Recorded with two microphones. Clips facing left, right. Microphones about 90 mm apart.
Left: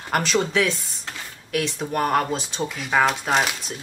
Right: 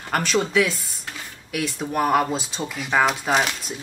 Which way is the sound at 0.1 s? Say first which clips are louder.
Even; centre (ahead or behind).